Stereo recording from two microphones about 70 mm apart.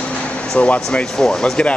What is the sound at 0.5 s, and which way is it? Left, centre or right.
Speech, centre.